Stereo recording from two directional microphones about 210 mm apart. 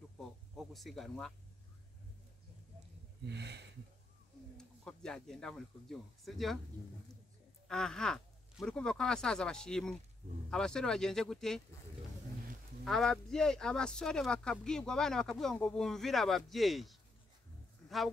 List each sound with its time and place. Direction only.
0.2 s a sound: centre (ahead or behind)
3.3 s speech: 55° right (ahead or behind)
4.6 s speech: 5° left (ahead or behind)
7.6 s speech: centre (ahead or behind)
12.8 s speech: centre (ahead or behind)